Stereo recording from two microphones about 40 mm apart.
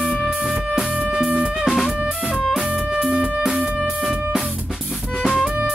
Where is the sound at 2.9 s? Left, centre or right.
Right.